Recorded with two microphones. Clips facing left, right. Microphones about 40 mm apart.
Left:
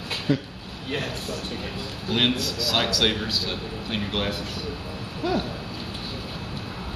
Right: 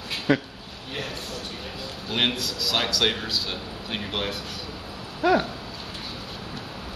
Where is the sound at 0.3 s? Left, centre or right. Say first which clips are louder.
Right 3 dB; right.